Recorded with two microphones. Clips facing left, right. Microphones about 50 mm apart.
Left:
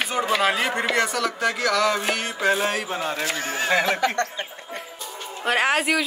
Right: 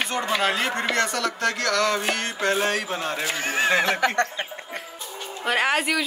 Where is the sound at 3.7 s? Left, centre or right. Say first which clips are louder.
Left 3 dB; centre.